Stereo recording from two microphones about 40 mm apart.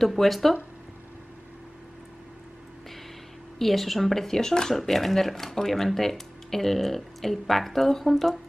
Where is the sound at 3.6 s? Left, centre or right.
Centre.